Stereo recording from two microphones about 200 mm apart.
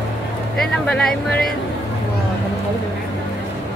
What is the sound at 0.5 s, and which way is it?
Speech, 5° left (ahead or behind).